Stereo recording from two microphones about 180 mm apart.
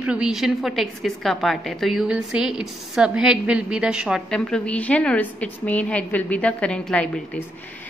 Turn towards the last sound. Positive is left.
turn(degrees=5)  # may be behind; listen again after turning